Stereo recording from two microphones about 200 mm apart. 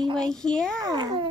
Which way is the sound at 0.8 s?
20° right (ahead or behind).